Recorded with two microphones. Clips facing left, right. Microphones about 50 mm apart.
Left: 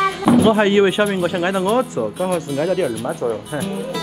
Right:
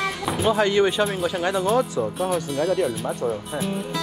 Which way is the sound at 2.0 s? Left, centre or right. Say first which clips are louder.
Left 3 dB; centre.